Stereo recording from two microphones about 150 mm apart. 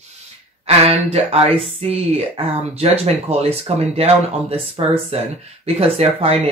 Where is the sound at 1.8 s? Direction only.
45° right (ahead or behind).